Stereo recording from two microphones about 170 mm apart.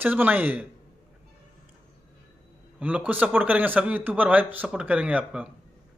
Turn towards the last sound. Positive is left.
turn(degrees=-10)  # may be behind; listen again after turning